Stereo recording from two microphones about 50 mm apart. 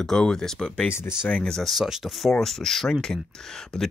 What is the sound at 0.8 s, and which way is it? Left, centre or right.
Speech, left.